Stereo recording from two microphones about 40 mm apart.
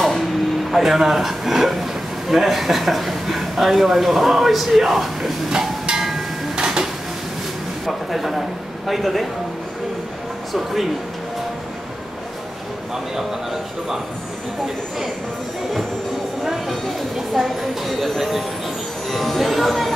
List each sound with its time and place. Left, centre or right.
0.0 s speech: centre
6.5 s dishes: right
7.8 s a man's voice: centre
10.5 s speech: centre
12.9 s speech: centre
16.4 s speech: centre